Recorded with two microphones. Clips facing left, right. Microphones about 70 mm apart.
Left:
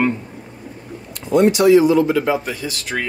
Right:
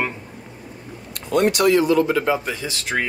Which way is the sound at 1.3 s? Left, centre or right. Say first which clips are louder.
Left 5 dB; right.